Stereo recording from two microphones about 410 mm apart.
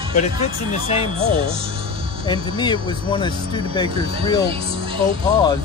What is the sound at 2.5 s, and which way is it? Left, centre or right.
Speech, centre.